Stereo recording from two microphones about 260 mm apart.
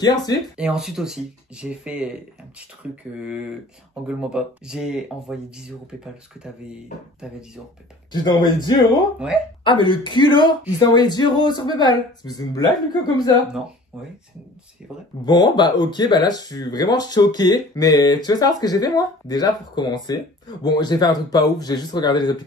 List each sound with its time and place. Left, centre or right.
0.0 s speech: centre
0.6 s speech: centre
8.1 s speech: centre
15.2 s speech: centre